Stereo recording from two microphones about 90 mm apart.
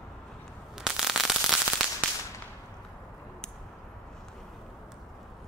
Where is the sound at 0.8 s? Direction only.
5° right (ahead or behind).